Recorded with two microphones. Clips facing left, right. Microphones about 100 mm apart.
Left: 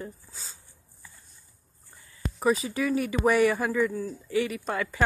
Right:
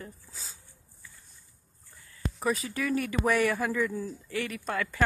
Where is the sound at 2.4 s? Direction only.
5° left (ahead or behind).